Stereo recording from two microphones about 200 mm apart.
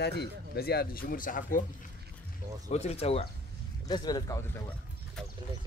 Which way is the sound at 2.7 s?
30° left (ahead or behind).